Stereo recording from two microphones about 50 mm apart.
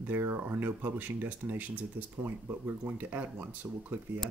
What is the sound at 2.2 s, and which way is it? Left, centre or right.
Speech, right.